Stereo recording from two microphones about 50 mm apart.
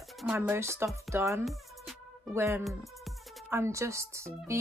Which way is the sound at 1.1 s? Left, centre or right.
Right.